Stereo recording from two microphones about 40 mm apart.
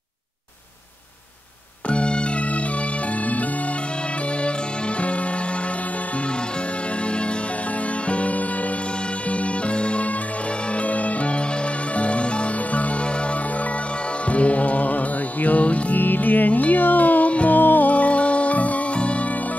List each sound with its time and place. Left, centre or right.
1.9 s music: left
8.1 s music: left
14.2 s music: left
16.0 s music: left
17.6 s music: left